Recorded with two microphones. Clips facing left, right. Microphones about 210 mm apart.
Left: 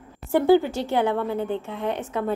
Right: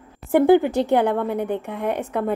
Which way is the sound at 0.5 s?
20° right (ahead or behind).